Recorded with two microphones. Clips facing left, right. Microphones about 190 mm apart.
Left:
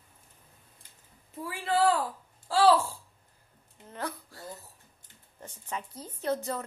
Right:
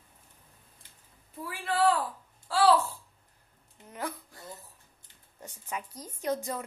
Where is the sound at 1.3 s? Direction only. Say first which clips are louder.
Left 3 dB; 25° left (ahead or behind).